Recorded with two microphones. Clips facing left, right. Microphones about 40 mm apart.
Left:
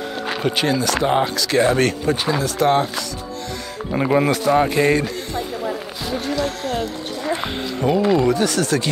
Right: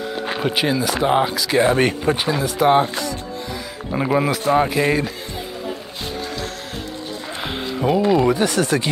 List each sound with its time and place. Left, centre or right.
0.4 s speech: centre
3.9 s speech: centre
7.4 s a sound: centre
8.3 s speech: centre